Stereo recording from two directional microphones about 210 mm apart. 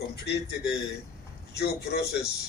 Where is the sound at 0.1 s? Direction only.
50° left (ahead or behind).